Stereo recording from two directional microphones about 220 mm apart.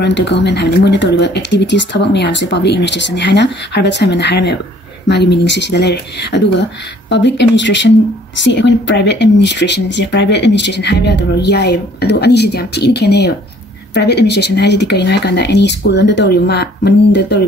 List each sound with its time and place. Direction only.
0.0 s speech: 50° left (ahead or behind)